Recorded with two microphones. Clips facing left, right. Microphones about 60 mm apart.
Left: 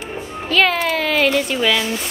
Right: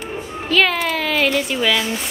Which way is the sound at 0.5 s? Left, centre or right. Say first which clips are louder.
Left 1 dB; centre.